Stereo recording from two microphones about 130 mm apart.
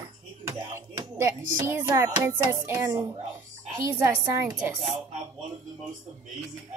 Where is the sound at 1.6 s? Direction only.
20° right (ahead or behind).